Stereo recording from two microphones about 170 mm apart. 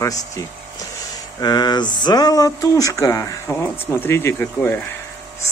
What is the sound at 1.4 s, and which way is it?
Speech, 25° left (ahead or behind).